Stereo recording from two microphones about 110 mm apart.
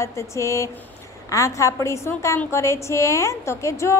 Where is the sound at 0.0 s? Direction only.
25° left (ahead or behind).